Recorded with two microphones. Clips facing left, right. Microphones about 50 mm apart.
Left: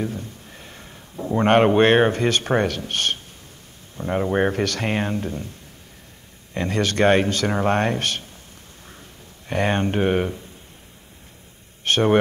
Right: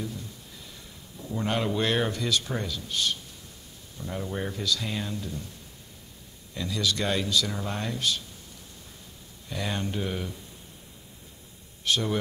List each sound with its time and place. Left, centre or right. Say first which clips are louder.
0.0 s speech: left 8 dB; left
6.5 s speech: left 7 dB; left
9.5 s speech: left 10 dB; left
11.8 s speech: left 9 dB; left